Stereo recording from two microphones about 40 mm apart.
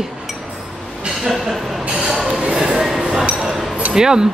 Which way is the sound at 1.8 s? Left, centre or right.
Right.